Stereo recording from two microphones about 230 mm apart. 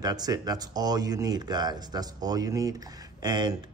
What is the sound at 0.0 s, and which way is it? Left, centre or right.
Speech, centre.